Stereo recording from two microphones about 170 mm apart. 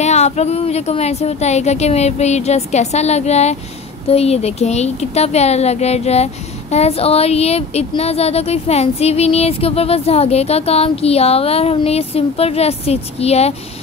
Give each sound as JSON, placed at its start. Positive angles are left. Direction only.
{"t": 0.0, "sound": "a woman's voice", "side_deg": 40}